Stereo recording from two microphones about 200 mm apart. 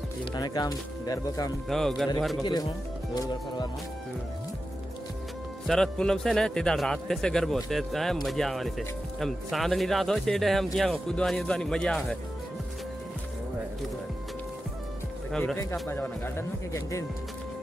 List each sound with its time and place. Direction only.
0.2 s speech: 20° left (ahead or behind)
1.7 s a man's voice: centre (ahead or behind)
5.7 s a man's voice: 5° left (ahead or behind)
15.3 s a man's voice: 5° left (ahead or behind)